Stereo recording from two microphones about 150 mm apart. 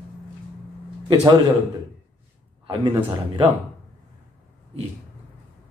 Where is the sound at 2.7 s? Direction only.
35° right (ahead or behind).